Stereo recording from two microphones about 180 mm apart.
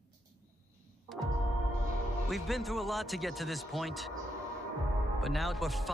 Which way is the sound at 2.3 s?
Centre (ahead or behind).